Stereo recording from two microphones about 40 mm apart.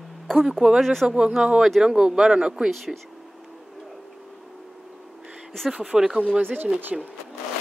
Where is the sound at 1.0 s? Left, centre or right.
Right.